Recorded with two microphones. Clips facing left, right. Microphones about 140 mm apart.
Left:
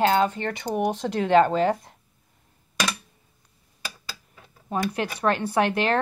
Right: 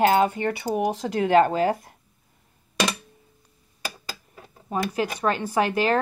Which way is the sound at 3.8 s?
45° right (ahead or behind).